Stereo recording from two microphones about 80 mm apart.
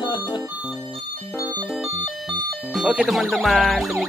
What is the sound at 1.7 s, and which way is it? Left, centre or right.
Music, centre.